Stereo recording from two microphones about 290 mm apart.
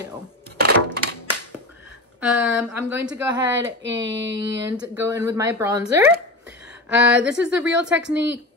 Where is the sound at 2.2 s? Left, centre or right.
Centre.